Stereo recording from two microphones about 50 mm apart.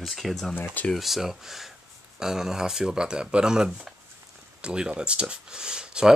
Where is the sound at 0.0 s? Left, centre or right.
Centre.